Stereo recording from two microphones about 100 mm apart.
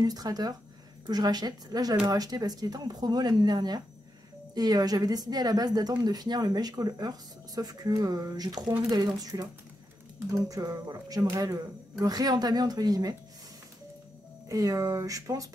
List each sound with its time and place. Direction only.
0.0 s speech: 40° right (ahead or behind)
14.5 s speech: 35° right (ahead or behind)